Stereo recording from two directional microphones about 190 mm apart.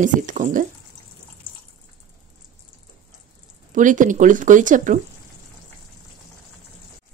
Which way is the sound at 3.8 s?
45° right (ahead or behind).